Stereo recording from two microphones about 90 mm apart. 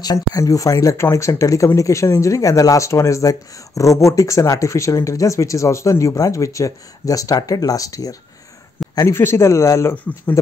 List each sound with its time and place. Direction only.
0.0 s speech: 45° left (ahead or behind)
8.9 s speech: 30° left (ahead or behind)